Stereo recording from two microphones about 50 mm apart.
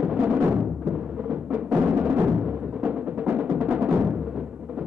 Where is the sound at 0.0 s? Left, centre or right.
Right.